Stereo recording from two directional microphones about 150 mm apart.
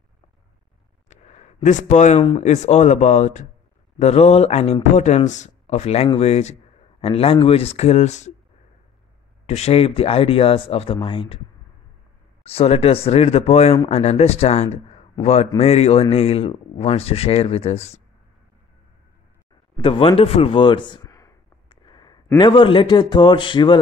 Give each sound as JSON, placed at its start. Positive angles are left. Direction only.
{"t": 1.1, "sound": "a sound", "side_deg": 50}
{"t": 2.2, "sound": "a man's voice", "side_deg": 45}
{"t": 9.5, "sound": "speech", "side_deg": 45}
{"t": 12.4, "sound": "a man's voice", "side_deg": 40}
{"t": 19.8, "sound": "speech", "side_deg": 35}
{"t": 21.6, "sound": "a sound", "side_deg": 30}
{"t": 22.4, "sound": "speech", "side_deg": 35}